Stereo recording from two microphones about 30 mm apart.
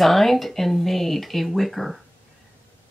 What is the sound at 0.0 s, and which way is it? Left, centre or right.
Speech, centre.